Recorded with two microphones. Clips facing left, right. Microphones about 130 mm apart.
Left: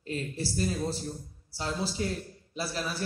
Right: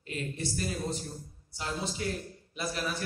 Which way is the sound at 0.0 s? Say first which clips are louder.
Left 2 dB; 35° left (ahead or behind).